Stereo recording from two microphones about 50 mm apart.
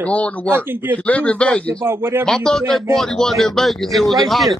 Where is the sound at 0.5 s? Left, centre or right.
Right.